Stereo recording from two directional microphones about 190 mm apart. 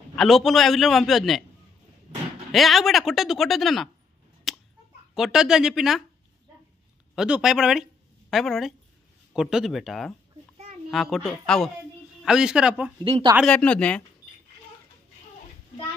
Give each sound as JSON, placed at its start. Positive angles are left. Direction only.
{"t": 0.1, "sound": "speech", "side_deg": 0}
{"t": 2.5, "sound": "speech", "side_deg": 0}
{"t": 4.5, "sound": "a sound", "side_deg": 0}
{"t": 5.1, "sound": "speech", "side_deg": 0}
{"t": 7.2, "sound": "speech", "side_deg": -5}
{"t": 13.0, "sound": "speech", "side_deg": -25}
{"t": 13.4, "sound": "speech", "side_deg": 5}